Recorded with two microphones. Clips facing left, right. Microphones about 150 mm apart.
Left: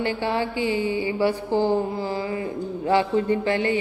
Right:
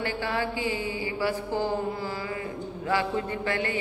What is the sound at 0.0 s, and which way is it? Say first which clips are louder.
A man's voice: left 5 dB; 20° left (ahead or behind).